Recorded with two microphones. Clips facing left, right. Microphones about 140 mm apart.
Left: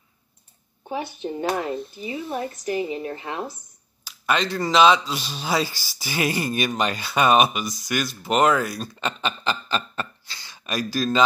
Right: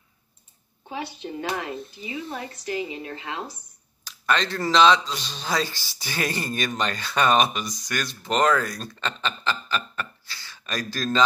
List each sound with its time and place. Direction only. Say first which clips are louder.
1.2 s a woman's voice: left 5 dB; 30° left (ahead or behind)
4.0 s speech: left 1 dB; 5° left (ahead or behind)